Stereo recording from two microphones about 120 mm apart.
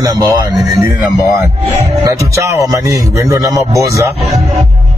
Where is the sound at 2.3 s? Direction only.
25° right (ahead or behind).